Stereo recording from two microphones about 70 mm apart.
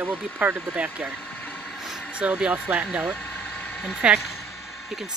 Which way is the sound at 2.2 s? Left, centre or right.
Centre.